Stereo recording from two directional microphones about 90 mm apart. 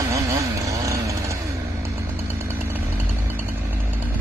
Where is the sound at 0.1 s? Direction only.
35° right (ahead or behind).